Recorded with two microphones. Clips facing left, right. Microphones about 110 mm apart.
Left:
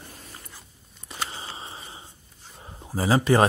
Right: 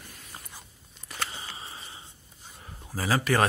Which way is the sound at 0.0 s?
35° left (ahead or behind).